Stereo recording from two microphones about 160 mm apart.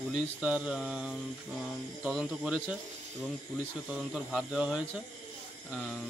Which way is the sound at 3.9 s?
Centre (ahead or behind).